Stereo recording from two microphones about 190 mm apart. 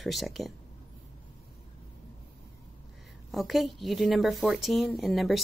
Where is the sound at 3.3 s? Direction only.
Centre (ahead or behind).